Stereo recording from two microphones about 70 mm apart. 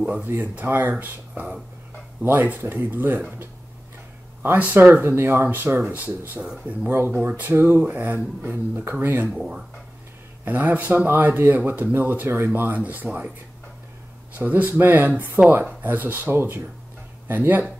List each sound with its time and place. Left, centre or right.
0.0 s speech: right
4.6 s speech: right
6.4 s speech: centre
6.9 s speech: right
10.4 s speech: right
14.3 s speech: right